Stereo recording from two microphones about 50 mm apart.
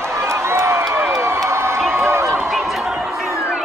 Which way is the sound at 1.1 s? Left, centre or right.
Right.